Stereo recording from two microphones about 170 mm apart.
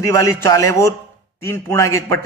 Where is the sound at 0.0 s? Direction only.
15° left (ahead or behind).